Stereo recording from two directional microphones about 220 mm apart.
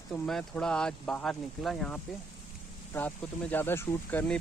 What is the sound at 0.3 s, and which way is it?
Speech, 5° left (ahead or behind).